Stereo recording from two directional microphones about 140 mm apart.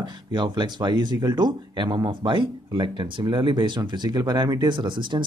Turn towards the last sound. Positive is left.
turn(degrees=-35)  # may be behind; listen again after turning